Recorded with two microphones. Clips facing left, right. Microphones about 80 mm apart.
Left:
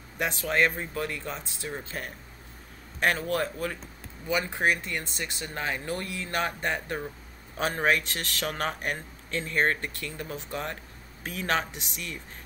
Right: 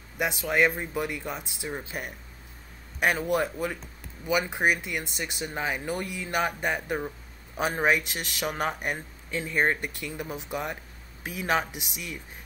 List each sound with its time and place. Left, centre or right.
0.2 s speech: centre